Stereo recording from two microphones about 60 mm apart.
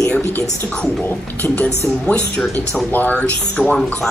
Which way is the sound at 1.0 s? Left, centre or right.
Left.